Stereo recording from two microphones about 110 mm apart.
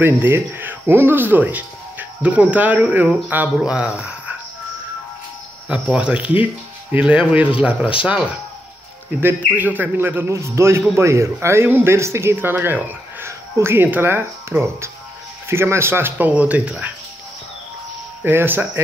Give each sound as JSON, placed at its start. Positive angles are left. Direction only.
{"t": 0.0, "sound": "speech", "side_deg": -20}
{"t": 5.7, "sound": "speech", "side_deg": -10}
{"t": 9.6, "sound": "speech", "side_deg": -15}
{"t": 18.2, "sound": "speech", "side_deg": -20}